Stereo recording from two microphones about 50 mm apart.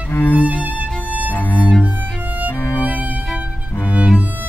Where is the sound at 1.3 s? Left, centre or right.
Left.